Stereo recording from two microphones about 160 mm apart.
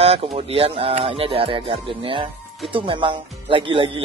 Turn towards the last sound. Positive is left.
turn(degrees=-35)  # may be behind; listen again after turning